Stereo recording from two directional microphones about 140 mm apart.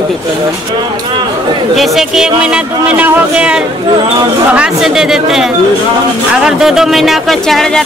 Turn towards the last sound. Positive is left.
turn(degrees=0)  # may be behind; listen again after turning